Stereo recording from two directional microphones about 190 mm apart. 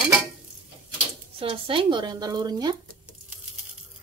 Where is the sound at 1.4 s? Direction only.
25° right (ahead or behind).